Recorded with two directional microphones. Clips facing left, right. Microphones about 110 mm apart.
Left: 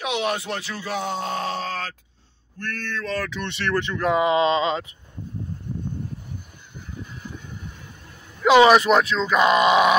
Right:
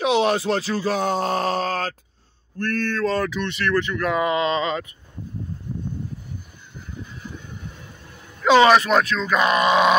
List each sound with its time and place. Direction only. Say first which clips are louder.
0.0 s speech: right 6 dB; 30° right (ahead or behind)
3.4 s speech: right 2 dB; 25° left (ahead or behind)
8.5 s speech: left 1 dB; 15° left (ahead or behind)